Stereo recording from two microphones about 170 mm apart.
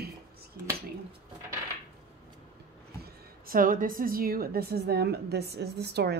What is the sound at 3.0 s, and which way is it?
A woman's voice, 55° right (ahead or behind).